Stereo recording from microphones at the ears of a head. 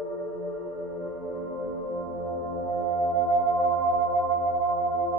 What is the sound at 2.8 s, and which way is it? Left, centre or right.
Music, right.